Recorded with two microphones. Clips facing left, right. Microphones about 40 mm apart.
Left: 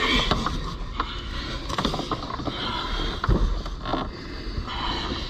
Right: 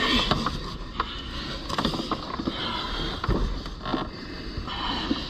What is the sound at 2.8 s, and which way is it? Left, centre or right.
Vehicle, left.